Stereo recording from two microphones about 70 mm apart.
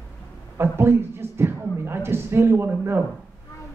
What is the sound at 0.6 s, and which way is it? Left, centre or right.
Speech, right.